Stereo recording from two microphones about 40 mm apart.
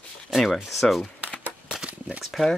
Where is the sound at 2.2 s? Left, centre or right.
Centre.